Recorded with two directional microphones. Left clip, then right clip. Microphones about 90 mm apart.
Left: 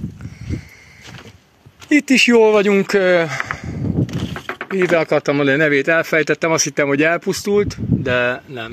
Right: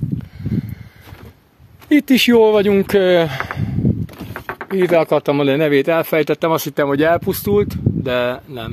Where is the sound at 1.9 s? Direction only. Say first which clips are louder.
Even; 35° right (ahead or behind).